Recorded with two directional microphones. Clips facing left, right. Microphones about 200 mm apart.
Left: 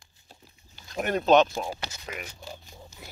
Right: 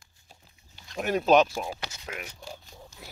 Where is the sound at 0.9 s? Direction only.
5° right (ahead or behind).